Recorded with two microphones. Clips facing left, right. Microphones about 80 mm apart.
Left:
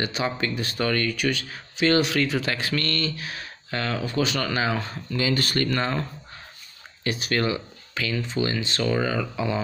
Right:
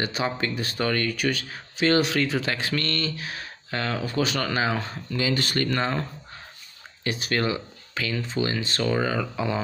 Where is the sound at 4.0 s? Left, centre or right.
Right.